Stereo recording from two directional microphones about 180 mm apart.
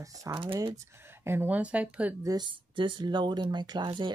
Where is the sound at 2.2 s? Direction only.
20° right (ahead or behind).